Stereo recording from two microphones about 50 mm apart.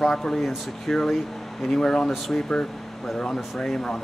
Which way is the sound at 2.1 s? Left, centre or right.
Centre.